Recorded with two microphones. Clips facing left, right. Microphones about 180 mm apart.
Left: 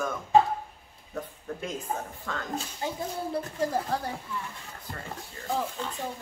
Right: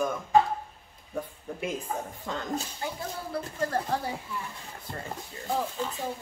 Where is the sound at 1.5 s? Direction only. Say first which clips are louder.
Even; 10° right (ahead or behind).